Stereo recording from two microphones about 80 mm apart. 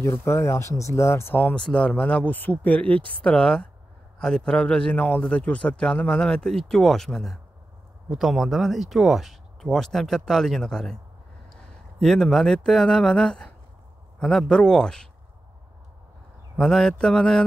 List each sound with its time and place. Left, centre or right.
0.2 s speech: left
1.3 s a man's voice: centre
12.0 s a man's voice: centre
16.5 s a man's voice: centre